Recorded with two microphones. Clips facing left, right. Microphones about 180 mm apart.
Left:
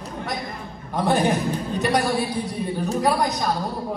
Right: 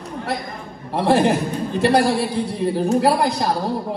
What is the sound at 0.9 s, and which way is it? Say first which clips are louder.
A man's voice: right 4 dB; 30° right (ahead or behind).